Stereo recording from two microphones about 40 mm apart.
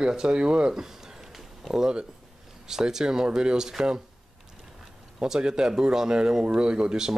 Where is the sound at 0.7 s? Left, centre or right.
Centre.